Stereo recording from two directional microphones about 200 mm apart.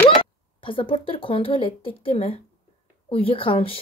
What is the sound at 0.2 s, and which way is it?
A woman's voice, 25° left (ahead or behind).